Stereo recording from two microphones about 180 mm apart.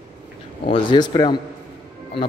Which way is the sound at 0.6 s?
30° left (ahead or behind).